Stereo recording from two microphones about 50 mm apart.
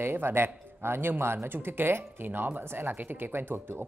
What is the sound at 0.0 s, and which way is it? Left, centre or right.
Speech, right.